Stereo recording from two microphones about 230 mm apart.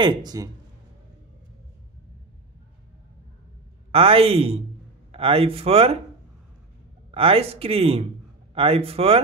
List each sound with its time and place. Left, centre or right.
0.0 s speech: centre
3.9 s a man's voice: right
7.1 s a man's voice: right